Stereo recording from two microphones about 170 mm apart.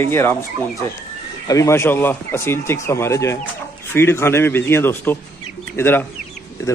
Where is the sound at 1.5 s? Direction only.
15° left (ahead or behind).